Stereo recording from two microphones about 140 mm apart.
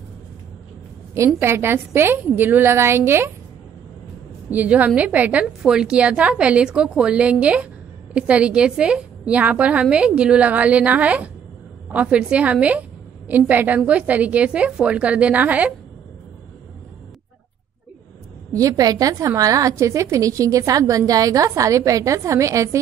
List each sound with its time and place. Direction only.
1.1 s a woman's voice: 20° right (ahead or behind)
4.5 s a woman's voice: 10° right (ahead or behind)
18.5 s a woman's voice: 25° right (ahead or behind)